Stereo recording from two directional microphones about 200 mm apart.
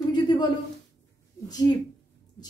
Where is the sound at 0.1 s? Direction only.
20° left (ahead or behind).